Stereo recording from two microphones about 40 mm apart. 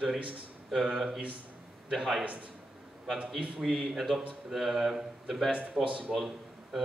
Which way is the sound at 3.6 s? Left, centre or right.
Centre.